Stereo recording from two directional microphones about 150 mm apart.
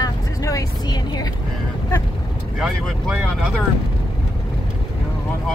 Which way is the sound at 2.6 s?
Centre (ahead or behind).